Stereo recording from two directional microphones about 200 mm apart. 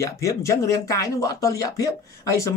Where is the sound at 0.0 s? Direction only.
15° left (ahead or behind).